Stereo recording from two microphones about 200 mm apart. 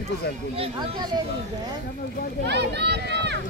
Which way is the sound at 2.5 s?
55° right (ahead or behind).